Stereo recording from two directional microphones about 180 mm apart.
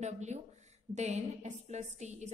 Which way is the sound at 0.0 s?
40° right (ahead or behind).